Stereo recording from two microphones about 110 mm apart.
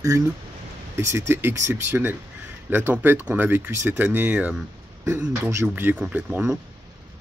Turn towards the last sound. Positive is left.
turn(degrees=-20)  # may be behind; listen again after turning